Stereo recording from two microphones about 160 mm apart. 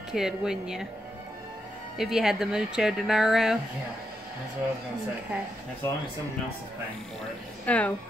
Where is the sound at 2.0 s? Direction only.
Centre (ahead or behind).